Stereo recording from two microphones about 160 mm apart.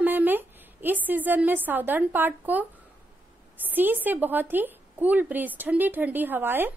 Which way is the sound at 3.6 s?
10° right (ahead or behind).